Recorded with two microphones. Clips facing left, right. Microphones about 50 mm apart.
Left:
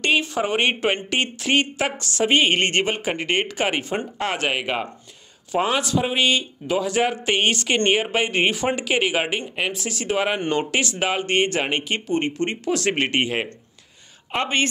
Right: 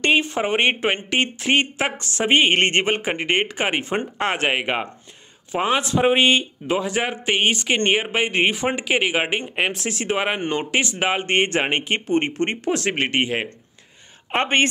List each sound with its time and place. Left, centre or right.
0.0 s speech: right
9.4 s speech: right
12.7 s speech: right
14.3 s speech: right